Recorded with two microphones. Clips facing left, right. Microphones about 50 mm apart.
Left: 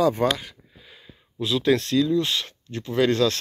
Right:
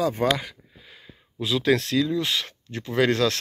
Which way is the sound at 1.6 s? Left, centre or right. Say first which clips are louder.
Left 1 dB; right.